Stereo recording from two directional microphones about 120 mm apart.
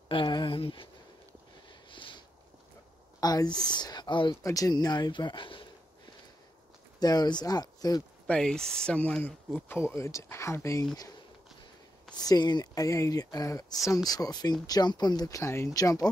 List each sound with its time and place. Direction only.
0.1 s speech: 40° left (ahead or behind)
1.7 s sniff: 45° left (ahead or behind)
3.2 s speech: 35° left (ahead or behind)
4.4 s speech: 30° left (ahead or behind); by 6.1 s 45° left (ahead or behind)
7.0 s speech: 35° left (ahead or behind)
8.3 s speech: 5° left (ahead or behind); by 10.9 s 25° left (ahead or behind)
12.3 s speech: 35° left (ahead or behind)